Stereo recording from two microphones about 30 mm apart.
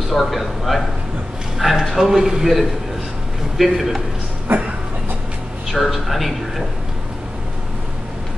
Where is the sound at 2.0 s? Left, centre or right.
Centre.